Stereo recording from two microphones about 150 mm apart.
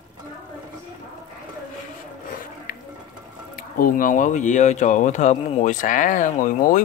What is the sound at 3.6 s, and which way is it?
Speech, 70° left (ahead or behind).